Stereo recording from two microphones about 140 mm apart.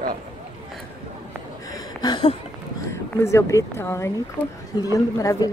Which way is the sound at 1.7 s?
30° left (ahead or behind).